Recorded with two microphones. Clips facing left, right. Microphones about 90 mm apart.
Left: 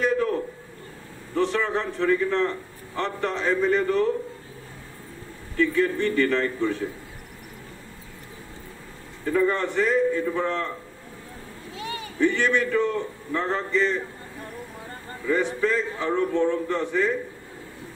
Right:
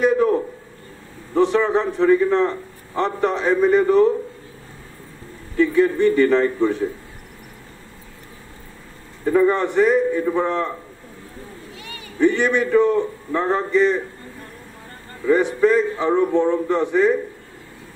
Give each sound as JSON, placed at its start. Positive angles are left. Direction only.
{"t": 0.0, "sound": "a sound", "side_deg": -20}
{"t": 1.3, "sound": "a man's voice", "side_deg": -20}
{"t": 5.6, "sound": "a man's voice", "side_deg": -20}
{"t": 9.2, "sound": "a man's voice", "side_deg": -25}
{"t": 11.7, "sound": "a sound", "side_deg": 25}
{"t": 12.2, "sound": "a man's voice", "side_deg": -20}
{"t": 15.2, "sound": "a man's voice", "side_deg": -20}